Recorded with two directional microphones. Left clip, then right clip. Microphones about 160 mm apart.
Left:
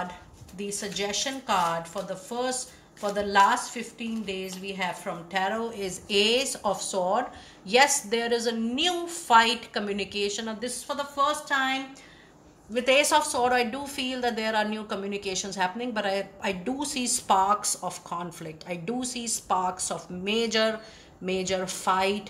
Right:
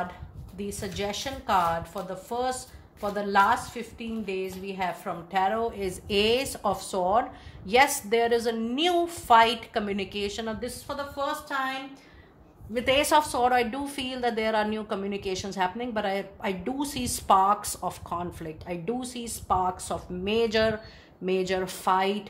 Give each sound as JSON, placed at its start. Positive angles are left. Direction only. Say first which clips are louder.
{"t": 0.6, "sound": "speech", "louder": "left 1 dB", "side_deg": -40}
{"t": 12.7, "sound": "speech", "louder": "left 1 dB", "side_deg": -40}